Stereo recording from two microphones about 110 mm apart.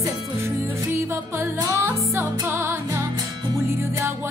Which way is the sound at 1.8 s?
20° right (ahead or behind).